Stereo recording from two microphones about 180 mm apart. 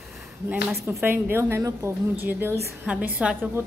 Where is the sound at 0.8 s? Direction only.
10° right (ahead or behind).